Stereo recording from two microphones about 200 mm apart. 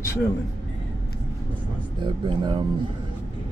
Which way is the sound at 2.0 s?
25° right (ahead or behind).